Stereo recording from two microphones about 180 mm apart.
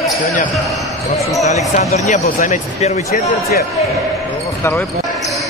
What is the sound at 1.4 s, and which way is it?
Speech, 20° right (ahead or behind).